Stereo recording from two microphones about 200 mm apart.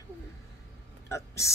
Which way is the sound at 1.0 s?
15° left (ahead or behind).